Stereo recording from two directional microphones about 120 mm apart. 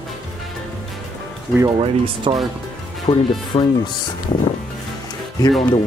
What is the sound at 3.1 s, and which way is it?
Speech, 40° left (ahead or behind).